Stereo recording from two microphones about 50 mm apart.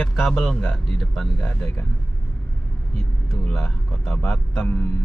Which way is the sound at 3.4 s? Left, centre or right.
Centre.